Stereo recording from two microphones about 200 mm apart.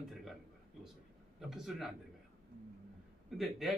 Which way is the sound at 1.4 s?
Centre (ahead or behind).